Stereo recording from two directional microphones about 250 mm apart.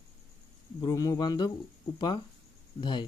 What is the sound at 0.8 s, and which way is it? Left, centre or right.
Speech, centre.